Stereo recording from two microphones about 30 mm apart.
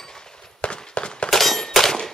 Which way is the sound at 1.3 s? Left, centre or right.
Centre.